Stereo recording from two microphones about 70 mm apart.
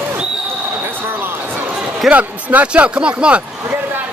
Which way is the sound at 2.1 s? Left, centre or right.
Right.